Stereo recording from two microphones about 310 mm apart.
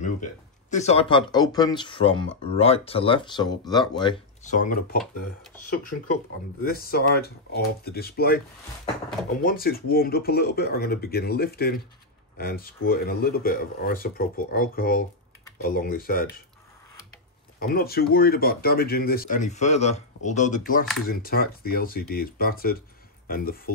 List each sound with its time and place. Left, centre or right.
0.0 s speech: left
6.6 s speech: left
9.4 s speech: left
17.6 s speech: left